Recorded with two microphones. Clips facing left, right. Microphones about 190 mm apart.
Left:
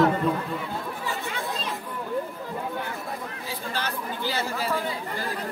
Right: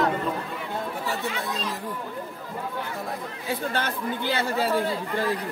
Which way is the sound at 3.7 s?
55° right (ahead or behind).